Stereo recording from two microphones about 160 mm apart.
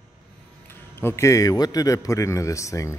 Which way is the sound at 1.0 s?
20° left (ahead or behind).